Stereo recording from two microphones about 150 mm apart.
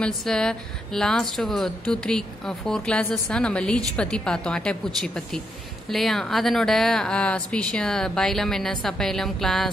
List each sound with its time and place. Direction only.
0.0 s a woman's voice: 5° left (ahead or behind)